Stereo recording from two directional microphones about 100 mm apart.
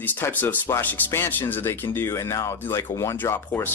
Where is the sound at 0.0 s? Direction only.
20° left (ahead or behind).